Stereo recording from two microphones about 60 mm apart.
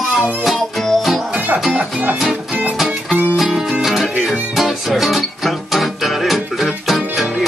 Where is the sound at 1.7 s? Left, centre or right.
Right.